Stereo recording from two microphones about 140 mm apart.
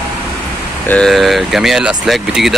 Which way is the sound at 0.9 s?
5° left (ahead or behind).